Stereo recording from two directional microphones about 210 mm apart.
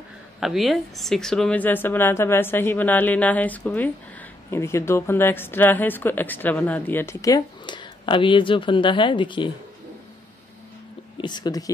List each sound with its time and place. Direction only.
0.4 s a woman's voice: centre (ahead or behind); by 9.5 s 20° left (ahead or behind)
11.1 s speech: 20° left (ahead or behind)